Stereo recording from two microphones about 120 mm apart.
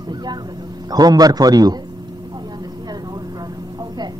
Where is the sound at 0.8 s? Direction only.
35° right (ahead or behind).